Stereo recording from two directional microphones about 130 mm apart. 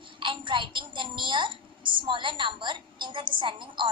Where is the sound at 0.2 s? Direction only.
40° right (ahead or behind).